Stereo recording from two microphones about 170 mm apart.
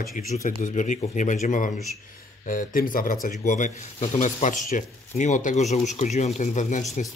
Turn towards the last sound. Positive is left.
turn(degrees=45)  # may be behind; listen again after turning